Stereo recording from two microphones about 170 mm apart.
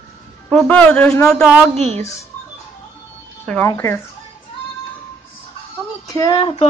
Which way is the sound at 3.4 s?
5° left (ahead or behind).